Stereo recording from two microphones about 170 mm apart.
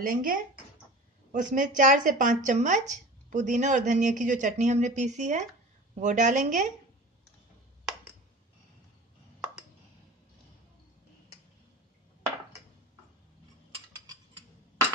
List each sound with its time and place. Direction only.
0.0 s speech: 55° right (ahead or behind)